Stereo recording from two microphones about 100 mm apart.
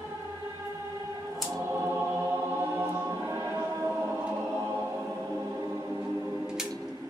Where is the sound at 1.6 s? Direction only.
25° right (ahead or behind).